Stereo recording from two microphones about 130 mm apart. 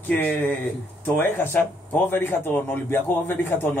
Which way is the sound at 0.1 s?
10° left (ahead or behind).